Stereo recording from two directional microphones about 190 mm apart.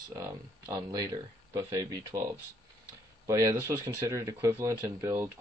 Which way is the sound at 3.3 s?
15° right (ahead or behind).